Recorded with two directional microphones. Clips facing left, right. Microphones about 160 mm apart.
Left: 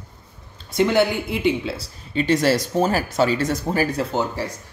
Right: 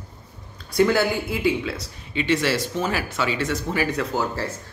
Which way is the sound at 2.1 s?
40° left (ahead or behind).